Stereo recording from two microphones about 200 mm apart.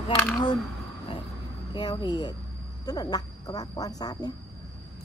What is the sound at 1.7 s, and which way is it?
A woman's voice, 20° left (ahead or behind).